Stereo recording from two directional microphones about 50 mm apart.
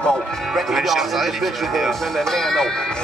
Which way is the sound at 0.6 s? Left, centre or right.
Centre.